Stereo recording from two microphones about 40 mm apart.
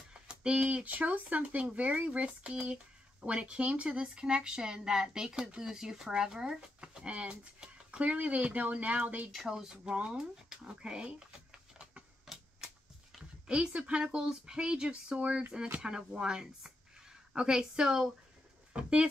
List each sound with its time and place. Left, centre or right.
0.1 s a sound: right
0.7 s speech: right; by 6.6 s centre
6.8 s a sound: right
7.1 s speech: right
9.5 s speech: centre
13.5 s speech: right
18.7 s speech: right